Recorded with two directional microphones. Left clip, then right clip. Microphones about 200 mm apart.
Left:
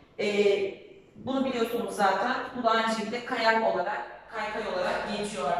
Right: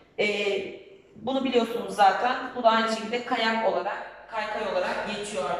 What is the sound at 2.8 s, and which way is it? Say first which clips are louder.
Speech: right 2 dB; centre (ahead or behind).